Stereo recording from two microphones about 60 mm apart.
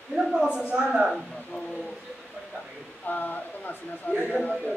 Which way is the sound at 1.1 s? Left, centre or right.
Centre.